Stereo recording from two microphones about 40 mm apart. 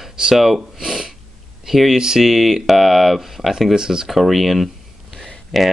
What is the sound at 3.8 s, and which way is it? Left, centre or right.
Speech, centre.